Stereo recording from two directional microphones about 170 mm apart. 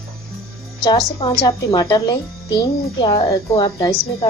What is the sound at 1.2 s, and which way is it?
Speech, 35° left (ahead or behind).